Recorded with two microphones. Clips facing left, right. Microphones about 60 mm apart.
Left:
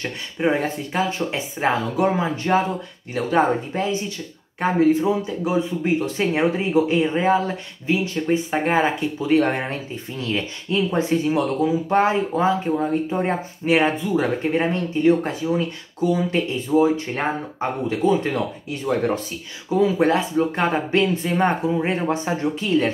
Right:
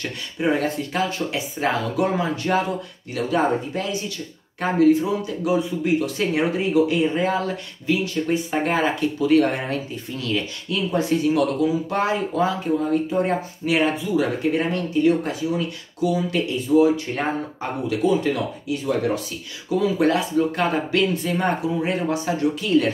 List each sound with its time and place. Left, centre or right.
0.0 s speech: left